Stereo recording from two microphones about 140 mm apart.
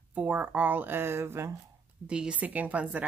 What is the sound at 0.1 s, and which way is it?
A woman's voice, 10° right (ahead or behind).